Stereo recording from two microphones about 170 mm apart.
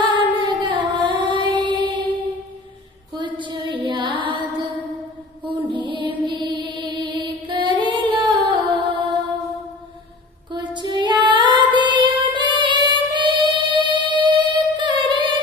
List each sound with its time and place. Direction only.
0.0 s a sound: 30° right (ahead or behind)
0.9 s music: 25° right (ahead or behind)
3.1 s female singing: 30° right (ahead or behind)
5.7 s music: 30° right (ahead or behind)
10.5 s child singing: 25° right (ahead or behind)
11.8 s music: 30° right (ahead or behind)